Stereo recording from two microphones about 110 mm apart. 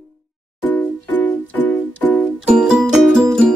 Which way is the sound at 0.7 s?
15° left (ahead or behind).